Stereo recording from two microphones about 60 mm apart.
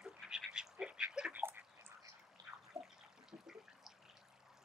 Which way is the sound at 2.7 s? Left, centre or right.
Centre.